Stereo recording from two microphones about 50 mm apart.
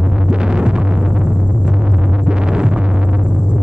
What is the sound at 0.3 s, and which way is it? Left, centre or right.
Music, centre.